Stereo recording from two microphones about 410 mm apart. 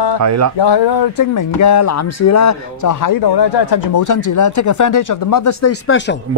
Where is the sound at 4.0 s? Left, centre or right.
Left.